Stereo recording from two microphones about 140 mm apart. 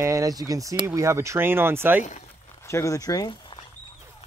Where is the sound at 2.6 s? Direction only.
20° left (ahead or behind).